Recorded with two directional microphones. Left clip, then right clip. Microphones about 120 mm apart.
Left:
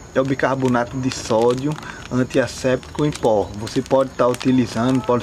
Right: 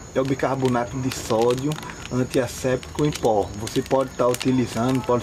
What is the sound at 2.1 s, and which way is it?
Speech, 25° left (ahead or behind).